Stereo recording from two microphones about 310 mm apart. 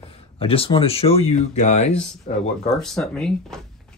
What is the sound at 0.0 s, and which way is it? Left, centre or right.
Speech, centre.